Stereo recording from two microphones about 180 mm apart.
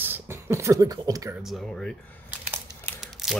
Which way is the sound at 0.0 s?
10° right (ahead or behind).